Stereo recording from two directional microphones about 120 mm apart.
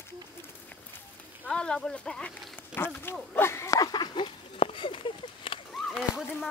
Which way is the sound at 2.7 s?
20° left (ahead or behind).